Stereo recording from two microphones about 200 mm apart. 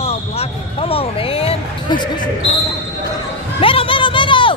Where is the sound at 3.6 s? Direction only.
25° left (ahead or behind).